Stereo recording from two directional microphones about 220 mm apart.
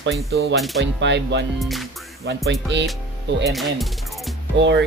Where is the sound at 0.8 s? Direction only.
55° right (ahead or behind).